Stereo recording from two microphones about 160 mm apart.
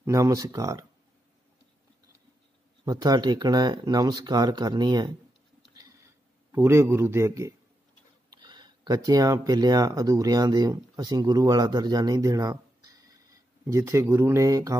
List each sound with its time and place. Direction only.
0.0 s speech: 20° right (ahead or behind)
2.8 s speech: 25° right (ahead or behind)
6.5 s speech: 15° right (ahead or behind)